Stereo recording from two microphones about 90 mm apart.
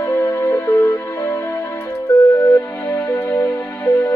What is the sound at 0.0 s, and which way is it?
Music, 35° left (ahead or behind).